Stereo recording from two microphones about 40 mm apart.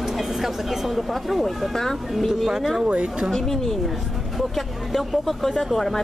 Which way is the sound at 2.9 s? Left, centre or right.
Right.